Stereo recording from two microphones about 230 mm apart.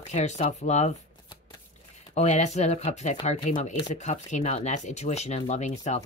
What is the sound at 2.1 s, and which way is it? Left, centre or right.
Speech, left.